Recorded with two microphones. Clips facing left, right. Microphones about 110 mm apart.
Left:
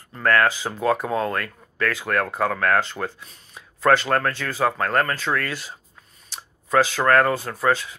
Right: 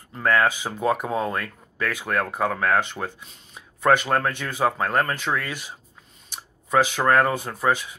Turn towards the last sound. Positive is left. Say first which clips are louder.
# left 1 dB
turn(degrees=-15)  # may be behind; listen again after turning